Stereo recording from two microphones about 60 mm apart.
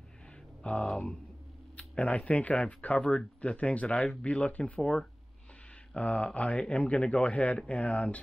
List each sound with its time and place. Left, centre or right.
0.7 s speech: left
5.9 s speech: left